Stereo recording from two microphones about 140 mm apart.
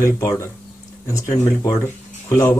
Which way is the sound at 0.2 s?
20° left (ahead or behind).